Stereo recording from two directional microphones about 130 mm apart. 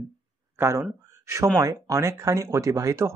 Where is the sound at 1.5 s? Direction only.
25° right (ahead or behind).